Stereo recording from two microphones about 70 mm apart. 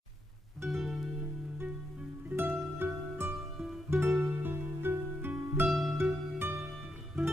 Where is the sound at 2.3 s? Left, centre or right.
Right.